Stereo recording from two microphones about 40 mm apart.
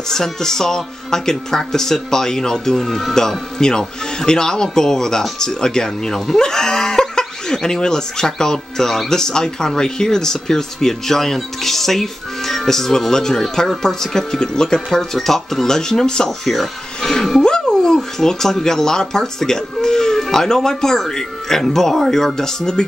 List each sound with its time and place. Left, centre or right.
0.1 s speech: centre
16.4 s speech: centre